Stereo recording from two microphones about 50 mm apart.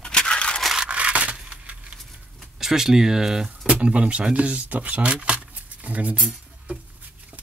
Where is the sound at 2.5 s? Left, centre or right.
Centre.